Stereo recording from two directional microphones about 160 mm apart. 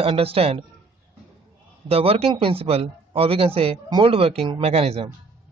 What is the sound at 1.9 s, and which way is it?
A man's voice, 40° right (ahead or behind).